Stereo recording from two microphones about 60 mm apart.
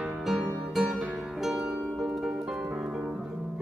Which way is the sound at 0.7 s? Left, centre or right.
Centre.